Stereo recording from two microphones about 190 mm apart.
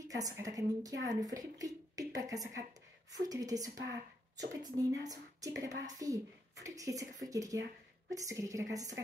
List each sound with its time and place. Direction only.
0.1 s a woman's voice: 20° right (ahead or behind)